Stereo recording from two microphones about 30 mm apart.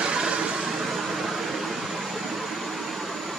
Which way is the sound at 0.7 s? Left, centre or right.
Centre.